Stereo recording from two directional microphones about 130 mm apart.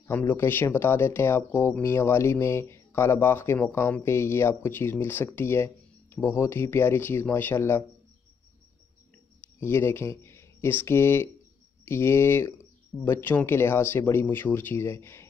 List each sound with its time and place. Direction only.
0.1 s speech: 15° left (ahead or behind)
9.6 s speech: 20° left (ahead or behind)